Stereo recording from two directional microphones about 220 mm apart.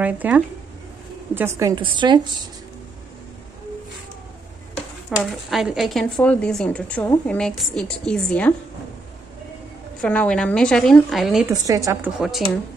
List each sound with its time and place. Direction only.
0.0 s a woman's voice: 5° right (ahead or behind)
5.2 s speech: centre (ahead or behind)
10.0 s speech: 5° left (ahead or behind)
11.4 s a woman's voice: 15° right (ahead or behind)
12.2 s speech: centre (ahead or behind)